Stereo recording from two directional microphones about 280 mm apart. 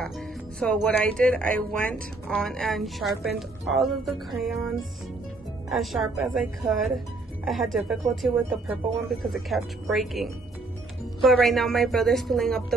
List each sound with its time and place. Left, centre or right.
0.6 s speech: centre
5.7 s speech: centre